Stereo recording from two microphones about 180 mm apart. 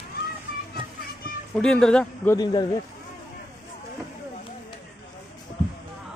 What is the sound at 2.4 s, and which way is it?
Speech, 25° left (ahead or behind).